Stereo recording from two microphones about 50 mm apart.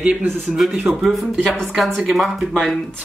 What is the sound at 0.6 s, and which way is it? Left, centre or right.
Speech, centre.